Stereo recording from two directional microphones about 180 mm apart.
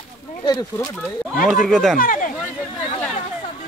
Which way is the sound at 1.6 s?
Centre (ahead or behind).